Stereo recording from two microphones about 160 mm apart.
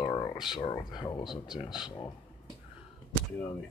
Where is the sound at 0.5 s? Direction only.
30° left (ahead or behind).